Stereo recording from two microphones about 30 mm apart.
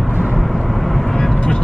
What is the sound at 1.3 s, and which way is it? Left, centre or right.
Vehicle, left.